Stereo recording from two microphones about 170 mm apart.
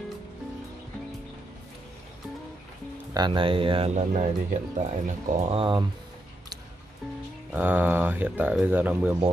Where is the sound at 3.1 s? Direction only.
25° right (ahead or behind).